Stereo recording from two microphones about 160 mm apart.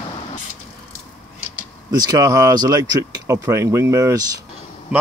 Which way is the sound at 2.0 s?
25° right (ahead or behind).